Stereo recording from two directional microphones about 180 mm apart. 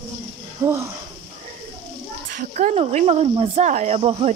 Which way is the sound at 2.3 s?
45° right (ahead or behind).